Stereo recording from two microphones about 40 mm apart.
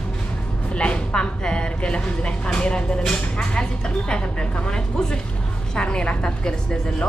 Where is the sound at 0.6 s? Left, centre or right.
Left.